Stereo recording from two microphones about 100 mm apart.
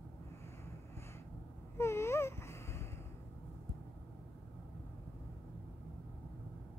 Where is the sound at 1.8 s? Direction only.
25° left (ahead or behind).